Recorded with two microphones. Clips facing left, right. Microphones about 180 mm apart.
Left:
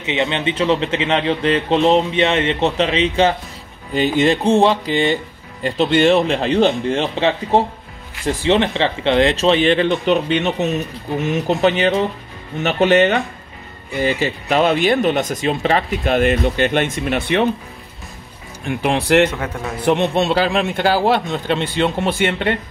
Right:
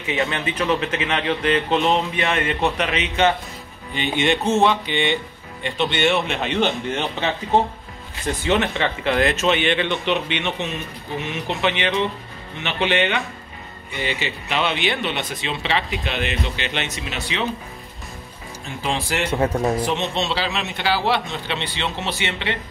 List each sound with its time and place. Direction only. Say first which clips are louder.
0.0 s speech: left 4 dB; 20° left (ahead or behind); by 17.5 s 55° left (ahead or behind)
18.7 s speech: left 9 dB; 65° left (ahead or behind)
19.3 s a man's voice: right 5 dB; 25° right (ahead or behind)
19.8 s speech: left 7 dB; 60° left (ahead or behind)